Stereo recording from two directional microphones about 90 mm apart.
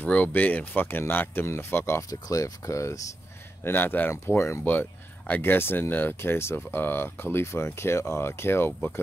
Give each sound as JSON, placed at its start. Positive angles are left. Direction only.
{"t": 0.0, "sound": "speech", "side_deg": 15}
{"t": 2.0, "sound": "speech", "side_deg": 40}
{"t": 3.6, "sound": "speech", "side_deg": 20}
{"t": 4.6, "sound": "a sound", "side_deg": 15}
{"t": 5.4, "sound": "speech", "side_deg": 25}